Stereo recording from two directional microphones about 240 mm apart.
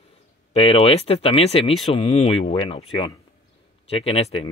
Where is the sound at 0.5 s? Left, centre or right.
Left.